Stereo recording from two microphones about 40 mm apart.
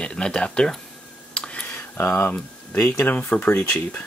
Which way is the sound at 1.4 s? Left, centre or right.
Left.